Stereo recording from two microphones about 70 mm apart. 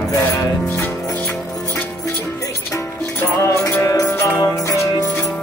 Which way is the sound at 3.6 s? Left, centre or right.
Left.